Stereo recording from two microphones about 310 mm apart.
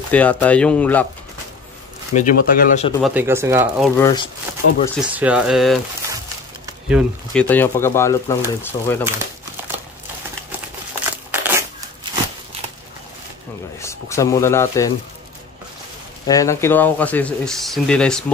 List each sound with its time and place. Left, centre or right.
0.1 s speech: centre
2.1 s speech: left
3.0 s speech: centre
4.0 s speech: centre
4.6 s speech: left
5.0 s speech: centre
11.3 s a sound: centre
13.7 s speech: centre
16.3 s speech: centre